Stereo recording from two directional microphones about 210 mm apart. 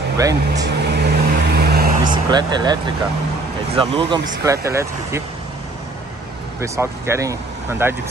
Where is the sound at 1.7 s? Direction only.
45° right (ahead or behind).